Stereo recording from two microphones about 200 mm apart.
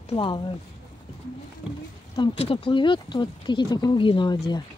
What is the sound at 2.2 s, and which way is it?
Speech, 30° left (ahead or behind).